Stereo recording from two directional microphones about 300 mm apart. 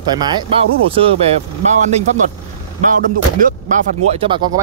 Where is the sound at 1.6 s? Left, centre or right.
Right.